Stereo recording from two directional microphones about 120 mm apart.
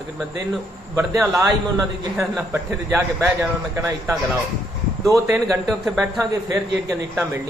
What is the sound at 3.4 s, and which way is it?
Speech, 25° right (ahead or behind).